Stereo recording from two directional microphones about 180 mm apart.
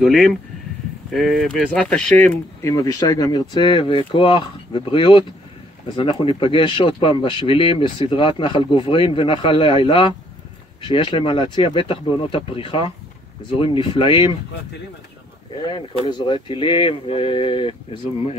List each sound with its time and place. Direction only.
0.0 s speech: centre (ahead or behind); by 14.3 s 30° left (ahead or behind)
15.5 s speech: 25° left (ahead or behind)